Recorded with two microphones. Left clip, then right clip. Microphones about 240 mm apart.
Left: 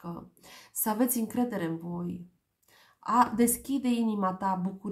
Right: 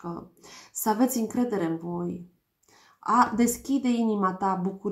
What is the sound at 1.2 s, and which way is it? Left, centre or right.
Speech, left.